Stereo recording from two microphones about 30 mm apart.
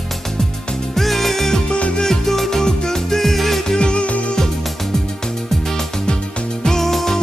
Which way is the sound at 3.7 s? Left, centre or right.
Left.